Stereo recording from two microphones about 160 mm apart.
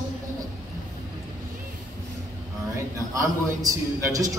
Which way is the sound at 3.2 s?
20° right (ahead or behind).